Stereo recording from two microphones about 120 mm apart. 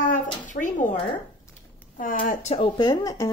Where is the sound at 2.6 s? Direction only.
35° left (ahead or behind).